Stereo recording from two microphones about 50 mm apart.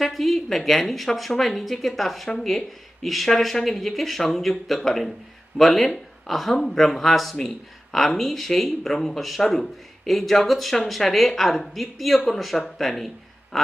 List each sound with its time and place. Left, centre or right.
0.0 s speech: centre